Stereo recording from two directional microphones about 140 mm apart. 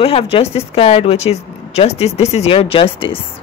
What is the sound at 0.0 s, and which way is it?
A woman's voice, 45° left (ahead or behind).